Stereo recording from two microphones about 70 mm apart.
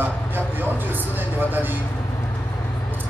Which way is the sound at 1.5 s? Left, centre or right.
Right.